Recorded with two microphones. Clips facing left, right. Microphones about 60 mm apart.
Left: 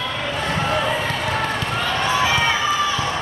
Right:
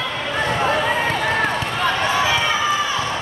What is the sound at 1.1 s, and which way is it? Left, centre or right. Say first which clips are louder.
Run: right 3 dB; right.